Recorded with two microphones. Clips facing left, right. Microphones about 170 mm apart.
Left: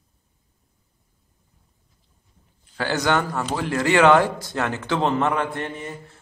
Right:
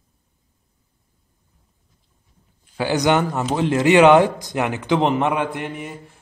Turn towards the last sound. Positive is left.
turn(degrees=-15)  # may be behind; listen again after turning